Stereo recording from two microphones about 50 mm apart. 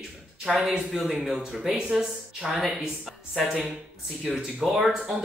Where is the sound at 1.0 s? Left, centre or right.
Centre.